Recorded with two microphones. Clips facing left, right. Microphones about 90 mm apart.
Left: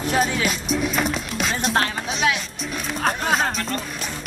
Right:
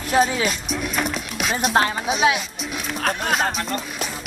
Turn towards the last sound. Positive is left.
turn(degrees=0)  # may be behind; listen again after turning